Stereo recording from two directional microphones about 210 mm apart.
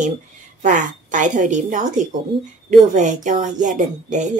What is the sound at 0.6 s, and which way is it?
Speech, 35° right (ahead or behind).